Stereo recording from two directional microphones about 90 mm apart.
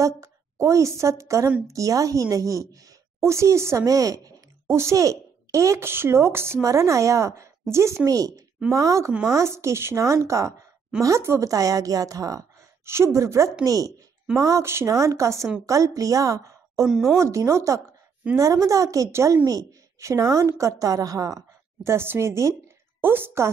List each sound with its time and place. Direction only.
0.0 s a woman's voice: 35° right (ahead or behind)
16.8 s a woman's voice: 5° right (ahead or behind)
17.2 s a woman's voice: 35° right (ahead or behind)